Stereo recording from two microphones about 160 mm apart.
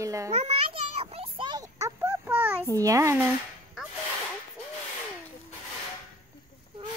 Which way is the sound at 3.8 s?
5° right (ahead or behind).